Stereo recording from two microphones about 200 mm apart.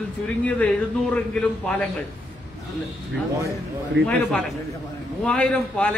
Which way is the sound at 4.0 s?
60° right (ahead or behind).